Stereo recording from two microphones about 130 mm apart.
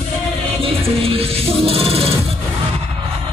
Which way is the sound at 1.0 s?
50° right (ahead or behind).